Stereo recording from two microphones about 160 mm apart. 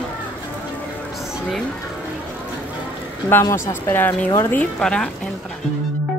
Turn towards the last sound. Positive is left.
turn(degrees=5)  # may be behind; listen again after turning